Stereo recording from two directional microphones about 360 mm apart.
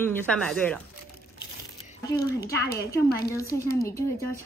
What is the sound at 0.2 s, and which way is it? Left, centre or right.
Speech, centre.